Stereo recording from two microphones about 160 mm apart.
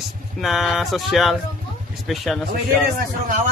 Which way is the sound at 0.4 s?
Centre (ahead or behind).